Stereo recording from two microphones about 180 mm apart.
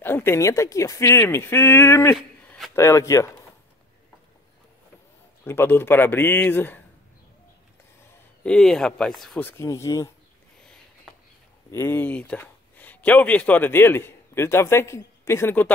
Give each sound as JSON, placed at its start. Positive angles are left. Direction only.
{"t": 0.0, "sound": "speech", "side_deg": 10}
{"t": 2.1, "sound": "a sound", "side_deg": 0}
{"t": 2.7, "sound": "speech", "side_deg": 15}
{"t": 5.4, "sound": "speech", "side_deg": 15}
{"t": 8.5, "sound": "speech", "side_deg": 5}
{"t": 11.7, "sound": "speech", "side_deg": 15}